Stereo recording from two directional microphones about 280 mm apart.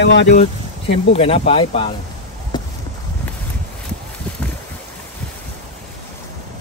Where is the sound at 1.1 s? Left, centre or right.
Left.